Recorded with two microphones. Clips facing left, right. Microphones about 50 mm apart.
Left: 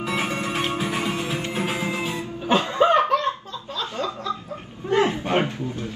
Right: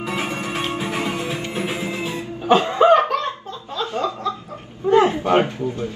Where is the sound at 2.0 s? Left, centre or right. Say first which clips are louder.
Right 5 dB; right.